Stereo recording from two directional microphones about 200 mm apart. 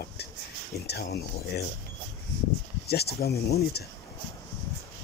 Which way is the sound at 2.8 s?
55° left (ahead or behind).